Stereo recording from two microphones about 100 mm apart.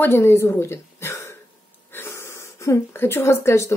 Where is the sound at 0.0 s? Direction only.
25° left (ahead or behind).